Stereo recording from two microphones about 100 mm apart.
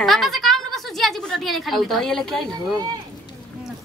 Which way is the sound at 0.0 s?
Centre (ahead or behind).